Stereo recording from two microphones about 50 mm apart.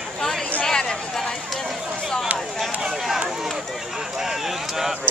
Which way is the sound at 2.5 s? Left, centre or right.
Centre.